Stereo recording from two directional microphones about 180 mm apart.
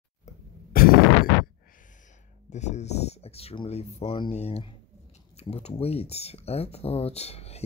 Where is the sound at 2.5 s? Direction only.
40° left (ahead or behind).